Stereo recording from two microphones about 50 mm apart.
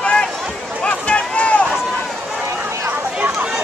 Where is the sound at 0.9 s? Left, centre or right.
Left.